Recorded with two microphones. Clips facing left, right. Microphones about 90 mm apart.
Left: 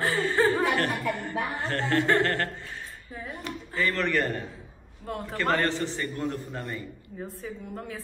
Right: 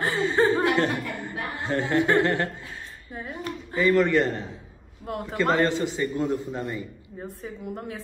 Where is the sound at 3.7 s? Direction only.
15° right (ahead or behind).